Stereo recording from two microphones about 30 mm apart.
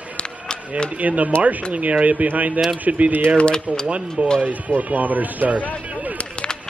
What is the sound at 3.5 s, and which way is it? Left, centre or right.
Speech, left.